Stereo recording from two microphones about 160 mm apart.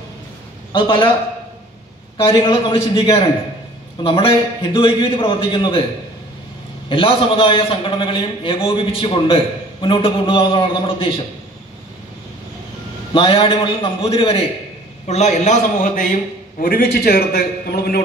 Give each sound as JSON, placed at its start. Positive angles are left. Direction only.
{"t": 0.7, "sound": "a man's voice", "side_deg": 30}
{"t": 2.1, "sound": "a man's voice", "side_deg": 30}
{"t": 6.9, "sound": "a man's voice", "side_deg": 35}
{"t": 13.1, "sound": "a man's voice", "side_deg": 35}
{"t": 15.0, "sound": "a man's voice", "side_deg": 45}
{"t": 16.6, "sound": "a man's voice", "side_deg": 70}